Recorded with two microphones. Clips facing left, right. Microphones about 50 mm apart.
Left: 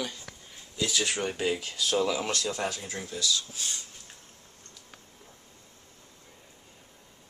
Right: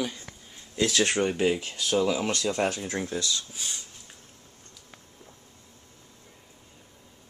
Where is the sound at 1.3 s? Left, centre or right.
Right.